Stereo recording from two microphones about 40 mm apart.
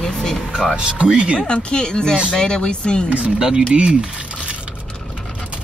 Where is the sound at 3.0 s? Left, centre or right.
Right.